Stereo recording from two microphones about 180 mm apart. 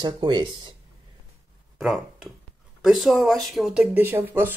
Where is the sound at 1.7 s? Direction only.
Centre (ahead or behind).